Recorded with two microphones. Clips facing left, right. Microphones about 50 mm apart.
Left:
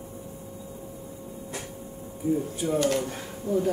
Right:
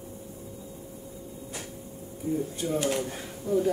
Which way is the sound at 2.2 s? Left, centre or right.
Centre.